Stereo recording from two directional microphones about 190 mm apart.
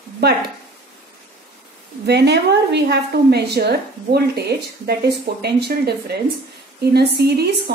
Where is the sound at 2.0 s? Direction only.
60° right (ahead or behind).